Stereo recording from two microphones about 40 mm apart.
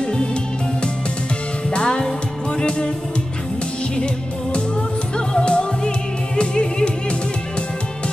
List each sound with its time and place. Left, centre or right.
0.0 s music: left
1.7 s music: left
5.1 s music: left